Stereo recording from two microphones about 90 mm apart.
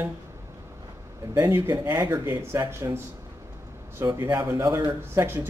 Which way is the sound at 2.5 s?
35° right (ahead or behind).